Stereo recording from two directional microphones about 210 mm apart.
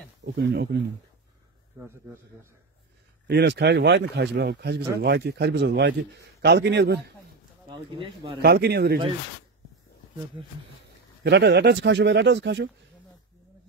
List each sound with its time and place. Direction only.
0.2 s a man's voice: 55° right (ahead or behind)
3.3 s a man's voice: 50° right (ahead or behind)
7.7 s speech: 25° right (ahead or behind)
8.4 s a man's voice: 50° right (ahead or behind)
11.2 s speech: 55° right (ahead or behind)